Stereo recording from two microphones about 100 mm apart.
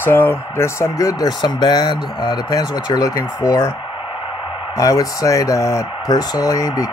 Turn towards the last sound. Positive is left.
turn(degrees=40)  # may be behind; listen again after turning